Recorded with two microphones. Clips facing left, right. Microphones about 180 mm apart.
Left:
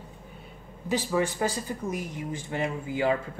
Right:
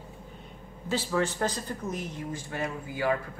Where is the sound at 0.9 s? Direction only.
15° left (ahead or behind).